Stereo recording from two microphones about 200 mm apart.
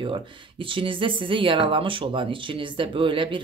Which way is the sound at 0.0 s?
25° right (ahead or behind).